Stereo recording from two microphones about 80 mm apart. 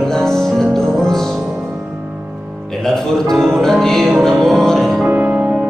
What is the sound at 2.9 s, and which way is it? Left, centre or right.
Music, centre.